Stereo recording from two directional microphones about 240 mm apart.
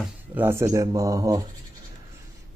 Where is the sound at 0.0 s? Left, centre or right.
Centre.